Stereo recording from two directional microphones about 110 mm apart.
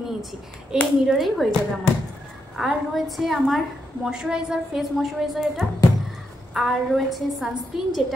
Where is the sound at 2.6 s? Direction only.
Centre (ahead or behind).